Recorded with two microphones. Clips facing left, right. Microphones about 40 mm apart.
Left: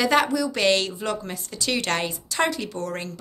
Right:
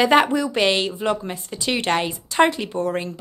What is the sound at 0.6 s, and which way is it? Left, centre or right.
A woman's voice, centre.